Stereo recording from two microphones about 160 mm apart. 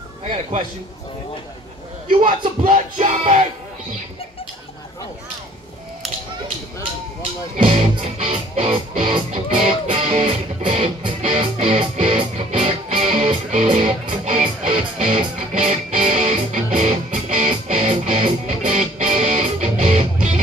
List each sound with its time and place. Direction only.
0.2 s a man's voice: 45° right (ahead or behind)
2.6 s music: 45° right (ahead or behind)
7.5 s music: 40° right (ahead or behind)